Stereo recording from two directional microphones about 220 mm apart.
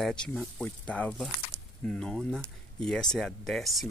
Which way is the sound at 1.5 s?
25° right (ahead or behind).